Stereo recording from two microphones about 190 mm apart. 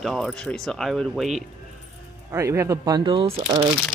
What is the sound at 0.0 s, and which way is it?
Speech, centre (ahead or behind).